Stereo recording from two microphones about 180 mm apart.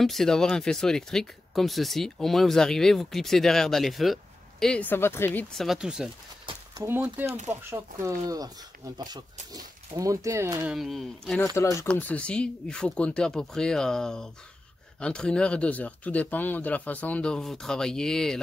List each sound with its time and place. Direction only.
0.0 s speech: centre (ahead or behind)
6.4 s a sound: 20° right (ahead or behind)
6.9 s speech: 10° right (ahead or behind)
10.8 s speech: centre (ahead or behind)
11.3 s speech: 15° left (ahead or behind)